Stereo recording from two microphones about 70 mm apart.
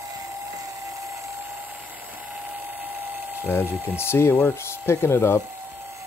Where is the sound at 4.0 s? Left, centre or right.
Left.